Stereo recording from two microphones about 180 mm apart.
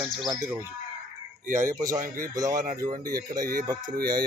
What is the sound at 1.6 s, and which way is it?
Speech, 20° right (ahead or behind).